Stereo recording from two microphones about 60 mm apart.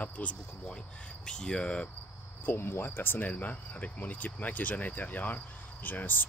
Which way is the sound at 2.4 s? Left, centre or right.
Left.